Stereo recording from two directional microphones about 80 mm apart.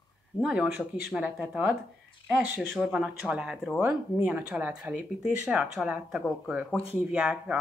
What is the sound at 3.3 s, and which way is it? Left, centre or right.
A woman's voice, centre.